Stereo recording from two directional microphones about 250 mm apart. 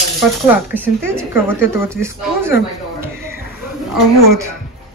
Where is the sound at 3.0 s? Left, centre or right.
Centre.